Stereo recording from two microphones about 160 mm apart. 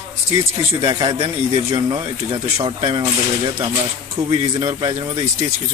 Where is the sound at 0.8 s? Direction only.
25° right (ahead or behind).